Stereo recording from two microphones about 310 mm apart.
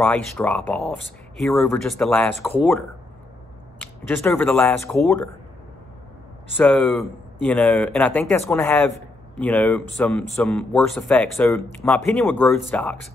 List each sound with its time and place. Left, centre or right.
0.0 s speech: centre
3.8 s speech: centre
6.5 s speech: centre